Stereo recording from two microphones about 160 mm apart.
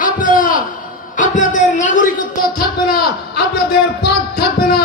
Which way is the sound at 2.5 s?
70° left (ahead or behind).